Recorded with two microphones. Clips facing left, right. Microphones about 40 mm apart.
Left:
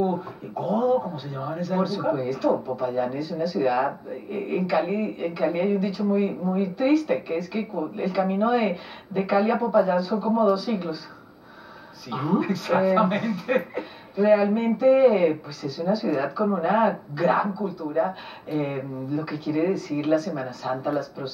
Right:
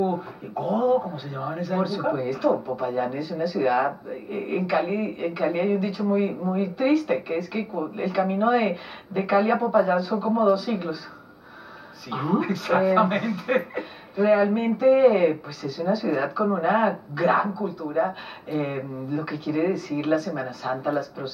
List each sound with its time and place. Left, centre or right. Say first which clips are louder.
0.0 s speech: even; centre
12.1 s speech: even; centre
13.7 s a sound: even; centre
14.8 s speech: even; centre